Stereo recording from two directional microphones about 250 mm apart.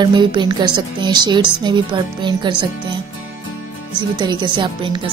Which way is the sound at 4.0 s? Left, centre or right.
Centre.